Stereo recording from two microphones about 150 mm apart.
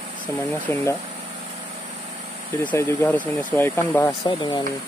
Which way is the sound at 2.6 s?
15° left (ahead or behind).